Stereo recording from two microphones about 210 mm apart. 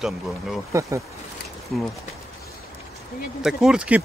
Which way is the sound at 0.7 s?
15° right (ahead or behind).